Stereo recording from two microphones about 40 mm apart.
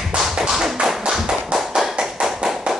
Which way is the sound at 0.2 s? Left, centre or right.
Centre.